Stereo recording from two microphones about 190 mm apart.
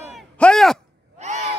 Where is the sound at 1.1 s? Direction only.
40° right (ahead or behind).